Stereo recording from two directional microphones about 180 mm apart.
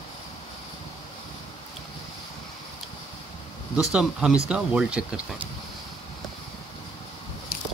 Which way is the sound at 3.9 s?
5° right (ahead or behind).